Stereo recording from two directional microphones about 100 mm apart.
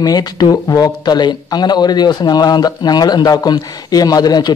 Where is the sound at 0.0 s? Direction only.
40° left (ahead or behind).